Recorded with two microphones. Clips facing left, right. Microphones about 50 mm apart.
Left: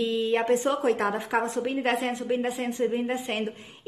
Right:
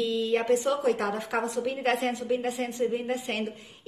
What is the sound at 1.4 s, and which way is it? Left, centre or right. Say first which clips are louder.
Speech: left 2 dB; left.